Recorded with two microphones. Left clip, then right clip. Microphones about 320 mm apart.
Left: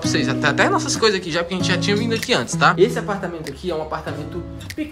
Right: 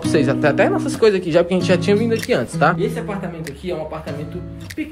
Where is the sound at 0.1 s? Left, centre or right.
Centre.